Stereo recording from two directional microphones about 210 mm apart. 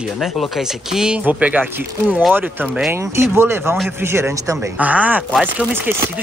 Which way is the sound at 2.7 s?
10° right (ahead or behind).